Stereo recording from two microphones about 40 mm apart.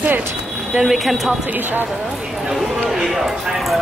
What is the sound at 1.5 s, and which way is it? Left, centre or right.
Speech, right.